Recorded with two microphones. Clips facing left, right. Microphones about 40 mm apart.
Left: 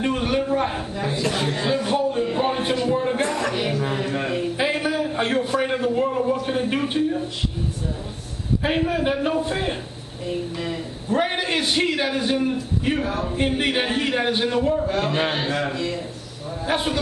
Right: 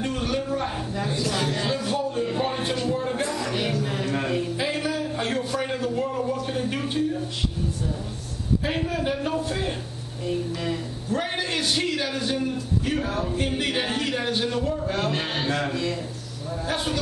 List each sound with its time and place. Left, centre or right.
0.0 s a sound: left
1.3 s speech: left
2.2 s a sound: centre
3.2 s music: left
3.5 s a sound: centre
4.6 s a sound: left
8.6 s a man's voice: left
10.2 s speech: centre
11.1 s a man's voice: left
13.0 s speech: centre
13.4 s a man's voice: left
14.9 s speech: centre
16.6 s a man's voice: left